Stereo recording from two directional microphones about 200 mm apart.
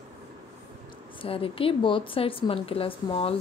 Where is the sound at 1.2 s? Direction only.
30° left (ahead or behind).